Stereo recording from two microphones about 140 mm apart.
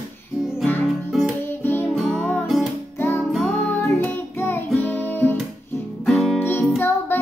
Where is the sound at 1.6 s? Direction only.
15° left (ahead or behind).